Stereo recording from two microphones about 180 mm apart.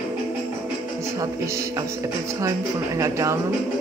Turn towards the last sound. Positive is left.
turn(degrees=-20)  # may be behind; listen again after turning